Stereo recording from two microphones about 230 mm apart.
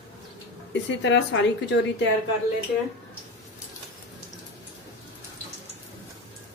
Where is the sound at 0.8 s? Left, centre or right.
Left.